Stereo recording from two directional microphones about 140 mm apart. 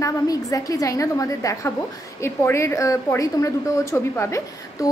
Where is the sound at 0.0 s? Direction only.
25° left (ahead or behind).